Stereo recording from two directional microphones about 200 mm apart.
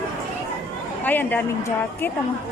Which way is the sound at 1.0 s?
10° left (ahead or behind).